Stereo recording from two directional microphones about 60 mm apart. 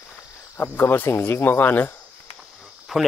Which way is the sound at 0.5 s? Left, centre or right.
Left.